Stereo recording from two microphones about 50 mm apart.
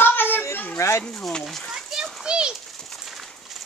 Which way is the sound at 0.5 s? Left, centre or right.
Left.